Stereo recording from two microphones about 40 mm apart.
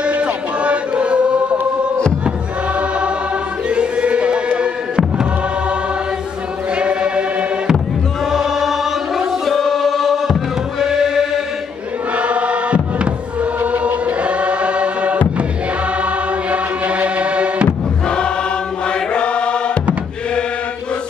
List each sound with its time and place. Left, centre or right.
0.0 s music: right
3.6 s music: right
6.7 s music: right
8.3 s chant: centre
10.8 s chant: centre
12.2 s chant: right
13.6 s music: right
16.0 s chant: right
18.0 s choir: left
18.9 s chant: left